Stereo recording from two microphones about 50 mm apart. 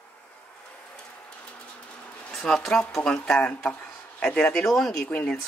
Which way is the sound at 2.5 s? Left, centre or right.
Left.